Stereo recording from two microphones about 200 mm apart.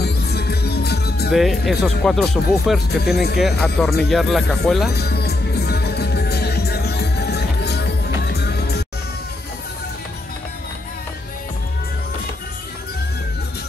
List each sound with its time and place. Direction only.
0.0 s music: 55° left (ahead or behind)
1.3 s speech: centre (ahead or behind)
4.9 s music: 55° left (ahead or behind)